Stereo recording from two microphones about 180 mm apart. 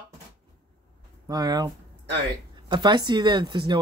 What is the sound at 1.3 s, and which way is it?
Speech, 20° right (ahead or behind).